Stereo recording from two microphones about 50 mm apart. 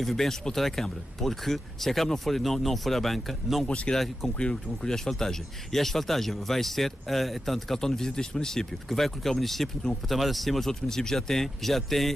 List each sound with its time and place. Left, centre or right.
0.0 s speech: centre
3.6 s speech: left
3.9 s speech: centre